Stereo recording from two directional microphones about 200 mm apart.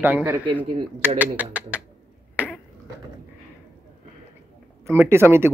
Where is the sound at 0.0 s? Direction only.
10° right (ahead or behind).